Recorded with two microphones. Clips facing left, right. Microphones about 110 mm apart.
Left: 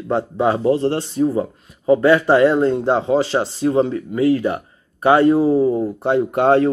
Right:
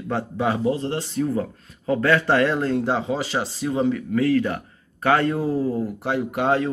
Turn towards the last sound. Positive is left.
turn(degrees=30)  # may be behind; listen again after turning